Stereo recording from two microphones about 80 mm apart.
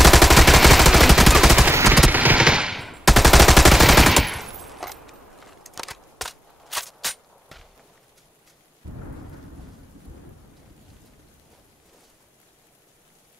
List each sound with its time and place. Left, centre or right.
0.0 s gunshot: centre
1.7 s machine gun: right
2.0 s a sound: centre
2.4 s machine gun: centre
2.8 s machine gun: centre